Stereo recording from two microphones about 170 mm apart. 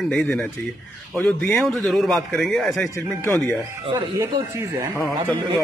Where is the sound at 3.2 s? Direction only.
15° left (ahead or behind).